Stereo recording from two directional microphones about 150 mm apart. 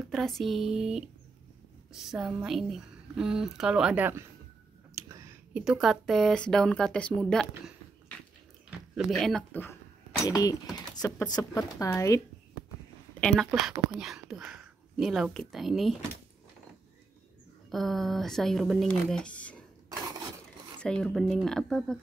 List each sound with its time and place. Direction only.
0.1 s speech: centre (ahead or behind)
4.9 s a sound: 20° right (ahead or behind)
5.5 s speech: 5° right (ahead or behind); by 12.2 s 20° left (ahead or behind)
13.2 s speech: centre (ahead or behind)
17.6 s speech: centre (ahead or behind)
20.8 s speech: 5° left (ahead or behind)